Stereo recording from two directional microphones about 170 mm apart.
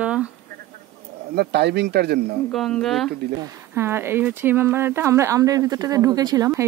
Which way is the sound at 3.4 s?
15° right (ahead or behind).